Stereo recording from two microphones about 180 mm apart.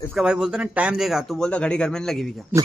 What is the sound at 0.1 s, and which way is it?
Speech, 5° right (ahead or behind).